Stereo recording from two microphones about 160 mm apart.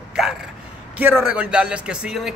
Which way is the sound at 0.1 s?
5° right (ahead or behind).